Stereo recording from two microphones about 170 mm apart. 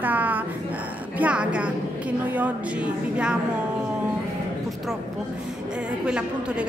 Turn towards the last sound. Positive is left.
turn(degrees=-5)  # may be behind; listen again after turning